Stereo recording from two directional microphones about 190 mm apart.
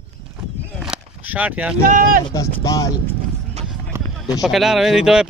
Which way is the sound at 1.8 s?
45° right (ahead or behind).